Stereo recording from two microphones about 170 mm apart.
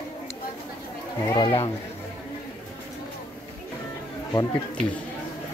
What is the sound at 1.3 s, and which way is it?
Speech, 25° left (ahead or behind).